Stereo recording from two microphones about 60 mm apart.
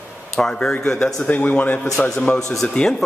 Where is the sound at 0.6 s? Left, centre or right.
Centre.